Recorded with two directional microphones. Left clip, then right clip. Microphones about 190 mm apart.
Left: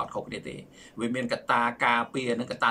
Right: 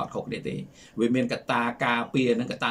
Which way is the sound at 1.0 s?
15° right (ahead or behind).